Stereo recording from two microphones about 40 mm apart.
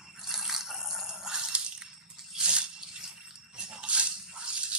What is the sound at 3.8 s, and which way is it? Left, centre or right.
Toothbrush, right.